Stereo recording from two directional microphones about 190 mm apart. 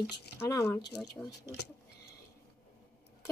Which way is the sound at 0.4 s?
15° left (ahead or behind).